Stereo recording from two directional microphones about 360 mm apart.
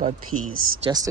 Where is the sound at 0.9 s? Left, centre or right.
Centre.